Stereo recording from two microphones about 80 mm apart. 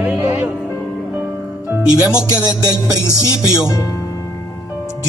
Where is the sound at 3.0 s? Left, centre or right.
Left.